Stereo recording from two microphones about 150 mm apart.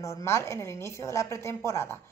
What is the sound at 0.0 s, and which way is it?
A woman's voice, 20° left (ahead or behind).